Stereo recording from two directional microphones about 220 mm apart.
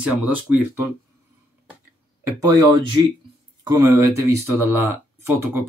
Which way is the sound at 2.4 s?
15° right (ahead or behind).